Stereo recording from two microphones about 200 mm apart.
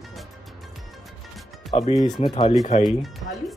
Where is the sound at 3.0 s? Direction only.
Centre (ahead or behind).